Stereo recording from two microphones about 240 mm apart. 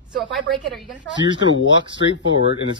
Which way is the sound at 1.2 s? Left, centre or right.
Left.